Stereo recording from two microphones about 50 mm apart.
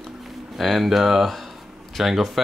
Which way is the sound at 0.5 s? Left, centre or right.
Centre.